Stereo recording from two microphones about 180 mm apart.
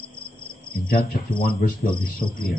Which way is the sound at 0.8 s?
55° left (ahead or behind).